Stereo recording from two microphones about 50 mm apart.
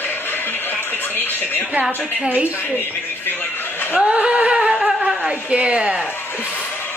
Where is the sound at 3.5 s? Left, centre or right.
Left.